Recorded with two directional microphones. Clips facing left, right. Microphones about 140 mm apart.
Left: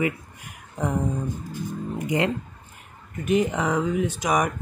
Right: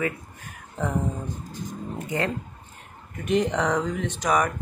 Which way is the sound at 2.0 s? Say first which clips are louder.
Left 4 dB; 15° left (ahead or behind).